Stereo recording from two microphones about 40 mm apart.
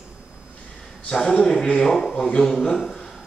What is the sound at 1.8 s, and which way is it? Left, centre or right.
A man's voice, centre.